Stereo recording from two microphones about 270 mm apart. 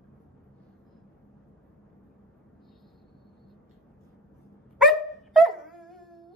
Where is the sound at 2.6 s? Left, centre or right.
Centre.